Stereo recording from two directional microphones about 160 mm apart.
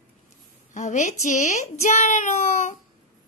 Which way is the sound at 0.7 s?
50° left (ahead or behind).